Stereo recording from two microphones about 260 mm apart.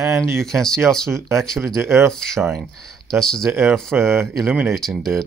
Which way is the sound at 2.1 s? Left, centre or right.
Centre.